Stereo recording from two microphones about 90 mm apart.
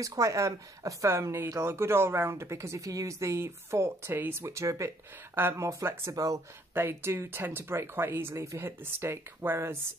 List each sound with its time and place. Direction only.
0.0 s speech: 35° right (ahead or behind)
6.7 s speech: 25° right (ahead or behind)